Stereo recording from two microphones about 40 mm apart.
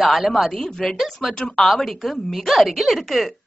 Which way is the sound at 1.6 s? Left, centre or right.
Centre.